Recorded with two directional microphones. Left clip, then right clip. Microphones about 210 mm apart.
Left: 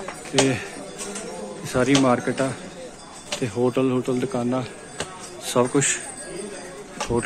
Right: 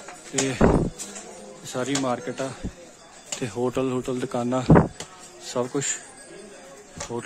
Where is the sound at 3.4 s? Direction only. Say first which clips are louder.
Left 4 dB; 30° right (ahead or behind).